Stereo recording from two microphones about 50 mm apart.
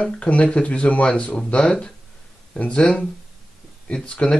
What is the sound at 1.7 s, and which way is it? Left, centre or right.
Speech, centre.